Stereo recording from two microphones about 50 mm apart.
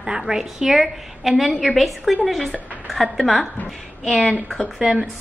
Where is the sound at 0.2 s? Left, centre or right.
Centre.